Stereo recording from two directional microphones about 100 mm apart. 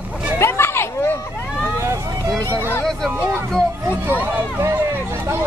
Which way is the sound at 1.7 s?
25° right (ahead or behind).